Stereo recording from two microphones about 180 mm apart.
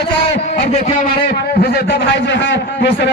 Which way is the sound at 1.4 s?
65° left (ahead or behind).